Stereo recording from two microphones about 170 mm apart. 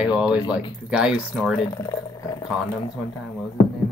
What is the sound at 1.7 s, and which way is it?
Speech, 20° left (ahead or behind).